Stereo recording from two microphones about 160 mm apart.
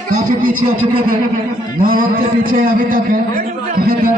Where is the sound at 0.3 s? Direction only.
60° right (ahead or behind).